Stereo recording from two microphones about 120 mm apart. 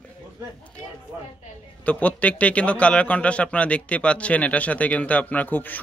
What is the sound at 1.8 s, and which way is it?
A man's voice, 10° left (ahead or behind).